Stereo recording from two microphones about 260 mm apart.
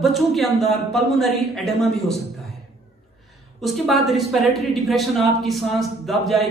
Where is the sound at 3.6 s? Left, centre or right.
Centre.